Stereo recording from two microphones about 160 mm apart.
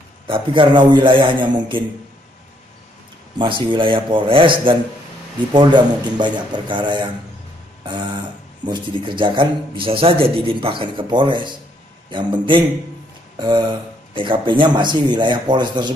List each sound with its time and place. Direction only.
0.3 s speech: 30° right (ahead or behind)
3.3 s speech: 30° right (ahead or behind)
8.6 s speech: 30° right (ahead or behind)